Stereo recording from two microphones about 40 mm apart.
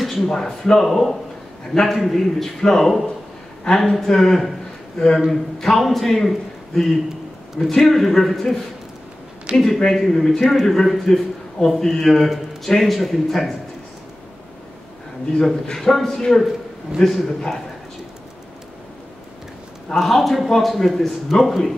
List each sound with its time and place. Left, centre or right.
0.0 s a man's voice: centre
5.6 s a man's voice: centre
9.6 s a man's voice: centre
15.3 s a man's voice: centre
20.0 s a man's voice: centre